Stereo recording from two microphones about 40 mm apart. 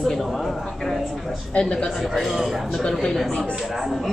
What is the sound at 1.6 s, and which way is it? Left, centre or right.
Speech, left.